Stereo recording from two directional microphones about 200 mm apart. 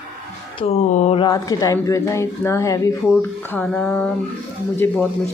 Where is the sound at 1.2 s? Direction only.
15° left (ahead or behind).